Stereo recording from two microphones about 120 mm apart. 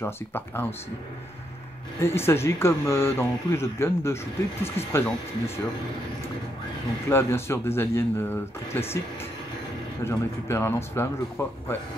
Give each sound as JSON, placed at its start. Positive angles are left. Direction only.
{"t": 0.0, "sound": "speech", "side_deg": 20}
{"t": 2.0, "sound": "speech", "side_deg": 20}
{"t": 7.1, "sound": "speech", "side_deg": 20}
{"t": 10.0, "sound": "speech", "side_deg": 20}